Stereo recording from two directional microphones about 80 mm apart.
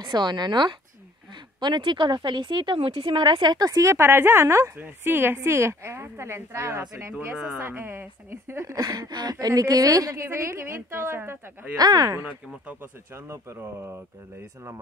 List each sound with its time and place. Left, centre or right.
0.0 s a woman's voice: right
8.6 s a woman's voice: right
10.2 s speech: right
11.7 s a woman's voice: right
13.1 s speech: right